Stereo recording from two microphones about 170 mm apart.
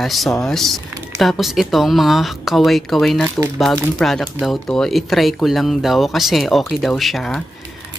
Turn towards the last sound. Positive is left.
turn(degrees=0)  # may be behind; listen again after turning